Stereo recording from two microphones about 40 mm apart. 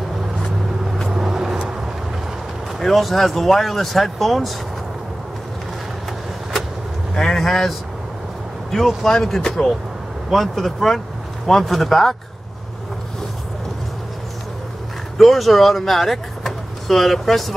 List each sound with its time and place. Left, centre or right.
1.0 s vehicle: centre
2.8 s speech: centre
7.2 s vehicle: centre
8.7 s speech: centre
9.6 s speech: left
10.3 s speech: centre
15.1 s speech: centre